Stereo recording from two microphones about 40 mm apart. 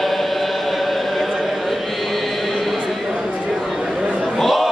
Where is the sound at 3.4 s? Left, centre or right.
Centre.